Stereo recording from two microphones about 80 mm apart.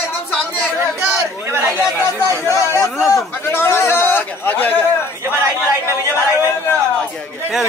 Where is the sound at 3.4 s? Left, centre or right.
Left.